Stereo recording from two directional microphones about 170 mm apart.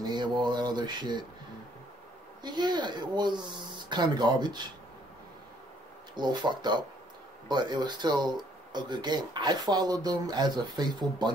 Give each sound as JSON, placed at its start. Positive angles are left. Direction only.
{"t": 0.4, "sound": "a sound", "side_deg": -25}
{"t": 2.4, "sound": "speech", "side_deg": -25}
{"t": 6.1, "sound": "speech", "side_deg": -25}